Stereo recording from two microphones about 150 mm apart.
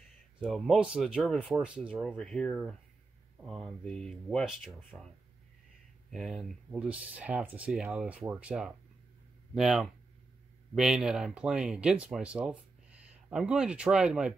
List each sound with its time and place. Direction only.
0.4 s speech: centre (ahead or behind)
2.1 s speech: 5° left (ahead or behind)
6.0 s speech: centre (ahead or behind)